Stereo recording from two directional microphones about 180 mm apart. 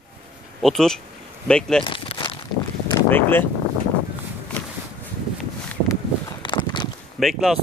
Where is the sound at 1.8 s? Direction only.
30° left (ahead or behind).